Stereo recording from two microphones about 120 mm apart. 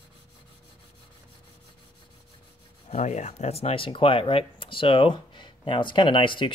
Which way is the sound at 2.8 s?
75° left (ahead or behind).